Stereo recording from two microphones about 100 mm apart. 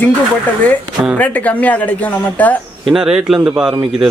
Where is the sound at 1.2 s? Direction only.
15° left (ahead or behind).